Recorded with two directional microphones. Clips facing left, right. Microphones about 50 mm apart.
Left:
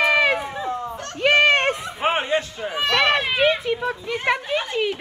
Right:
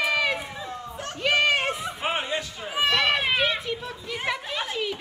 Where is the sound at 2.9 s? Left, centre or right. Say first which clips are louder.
Left 6 dB; left.